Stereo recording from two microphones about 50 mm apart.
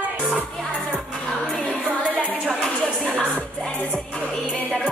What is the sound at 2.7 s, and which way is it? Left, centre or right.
Music, centre.